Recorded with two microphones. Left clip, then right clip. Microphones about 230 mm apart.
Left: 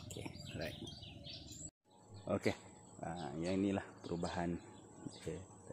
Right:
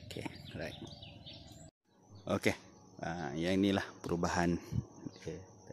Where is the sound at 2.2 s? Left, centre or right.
Centre.